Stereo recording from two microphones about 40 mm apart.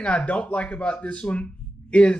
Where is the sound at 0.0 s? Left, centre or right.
Left.